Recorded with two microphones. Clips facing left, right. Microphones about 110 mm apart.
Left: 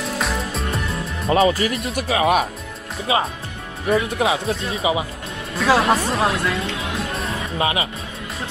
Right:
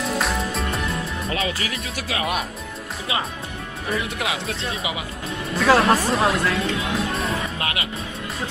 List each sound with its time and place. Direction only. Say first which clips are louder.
0.0 s music: right 1 dB; centre (ahead or behind)
1.3 s speech: left 12 dB; 40° left (ahead or behind)
4.2 s speech: left 6 dB; 30° left (ahead or behind)
5.6 s speech: even; centre (ahead or behind)
7.5 s speech: left 6 dB; 25° left (ahead or behind)